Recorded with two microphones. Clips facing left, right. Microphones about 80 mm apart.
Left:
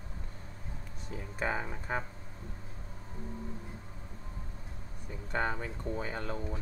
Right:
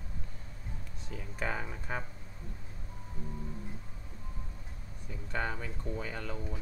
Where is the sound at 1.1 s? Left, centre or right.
Centre.